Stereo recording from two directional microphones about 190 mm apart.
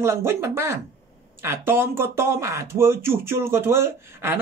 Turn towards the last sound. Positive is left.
turn(degrees=-15)  # may be behind; listen again after turning